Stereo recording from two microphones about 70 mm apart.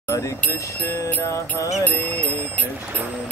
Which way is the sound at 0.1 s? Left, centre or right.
Left.